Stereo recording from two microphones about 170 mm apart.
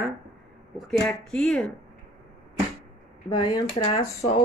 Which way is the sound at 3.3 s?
25° left (ahead or behind).